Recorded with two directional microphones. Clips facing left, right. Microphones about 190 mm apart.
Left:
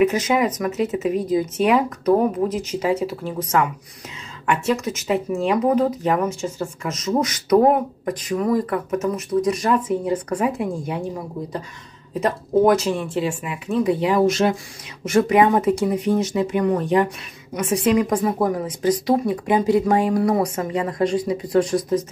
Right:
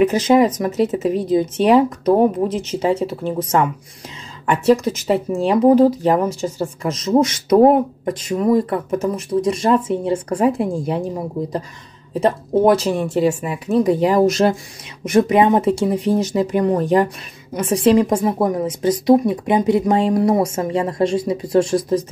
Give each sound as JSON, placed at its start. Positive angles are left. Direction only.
{"t": 0.0, "sound": "a woman's voice", "side_deg": -30}
{"t": 12.2, "sound": "speech", "side_deg": -30}
{"t": 15.0, "sound": "a woman's voice", "side_deg": -20}